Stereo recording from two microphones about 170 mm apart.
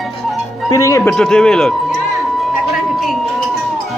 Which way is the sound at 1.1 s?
5° left (ahead or behind).